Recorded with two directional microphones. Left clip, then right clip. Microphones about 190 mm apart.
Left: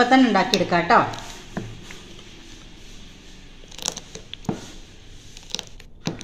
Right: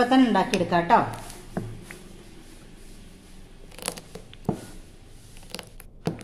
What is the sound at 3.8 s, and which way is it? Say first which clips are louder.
Scissors: left 5 dB; 20° right (ahead or behind).